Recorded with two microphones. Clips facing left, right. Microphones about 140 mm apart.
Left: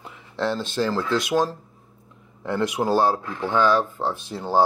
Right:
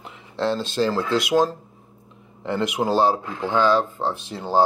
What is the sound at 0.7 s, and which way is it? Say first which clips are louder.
Speech: right 1 dB; 20° right (ahead or behind).